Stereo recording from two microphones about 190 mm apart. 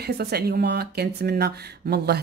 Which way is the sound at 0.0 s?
55° right (ahead or behind).